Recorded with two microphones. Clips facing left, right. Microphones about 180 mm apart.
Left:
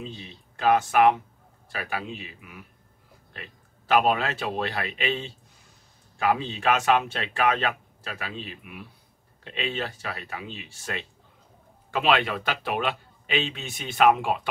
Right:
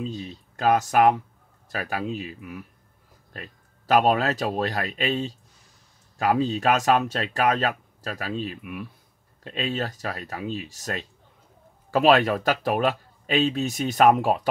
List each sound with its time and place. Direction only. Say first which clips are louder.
0.0 s speech: right 7 dB; 40° right (ahead or behind)